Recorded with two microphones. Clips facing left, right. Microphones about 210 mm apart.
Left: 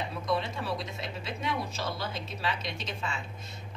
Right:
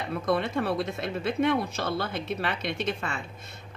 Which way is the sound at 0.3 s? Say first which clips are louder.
Right 6 dB; 55° right (ahead or behind).